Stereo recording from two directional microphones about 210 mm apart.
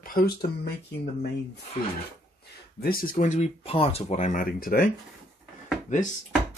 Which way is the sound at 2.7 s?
45° left (ahead or behind).